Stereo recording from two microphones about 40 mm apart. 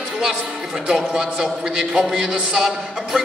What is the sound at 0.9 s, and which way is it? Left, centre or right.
Speech, centre.